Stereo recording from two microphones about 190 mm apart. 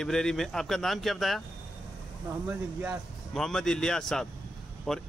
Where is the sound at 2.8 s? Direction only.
Centre (ahead or behind).